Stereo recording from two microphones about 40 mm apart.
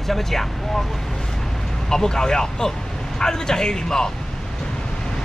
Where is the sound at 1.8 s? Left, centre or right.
Centre.